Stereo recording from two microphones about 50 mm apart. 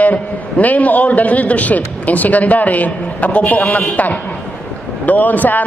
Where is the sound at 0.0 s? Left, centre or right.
Left.